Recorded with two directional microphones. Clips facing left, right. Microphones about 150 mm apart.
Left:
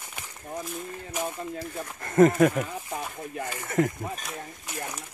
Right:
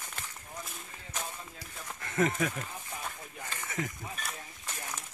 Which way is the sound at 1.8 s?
45° left (ahead or behind).